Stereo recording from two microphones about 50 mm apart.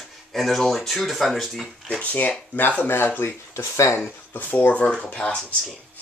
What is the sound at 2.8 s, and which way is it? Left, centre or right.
Speech, left.